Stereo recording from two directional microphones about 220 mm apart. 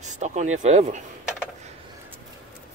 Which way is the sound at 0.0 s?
30° right (ahead or behind).